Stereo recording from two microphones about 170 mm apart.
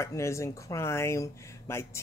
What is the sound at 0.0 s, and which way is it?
Speech, 15° left (ahead or behind).